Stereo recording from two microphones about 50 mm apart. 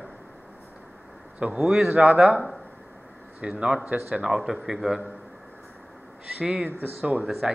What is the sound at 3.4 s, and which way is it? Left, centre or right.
Speech, right.